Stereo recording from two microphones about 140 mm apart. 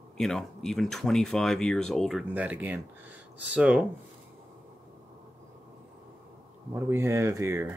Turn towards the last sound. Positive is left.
turn(degrees=-20)  # may be behind; listen again after turning